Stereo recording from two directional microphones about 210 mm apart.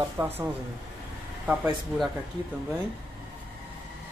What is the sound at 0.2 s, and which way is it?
Speech, 20° right (ahead or behind).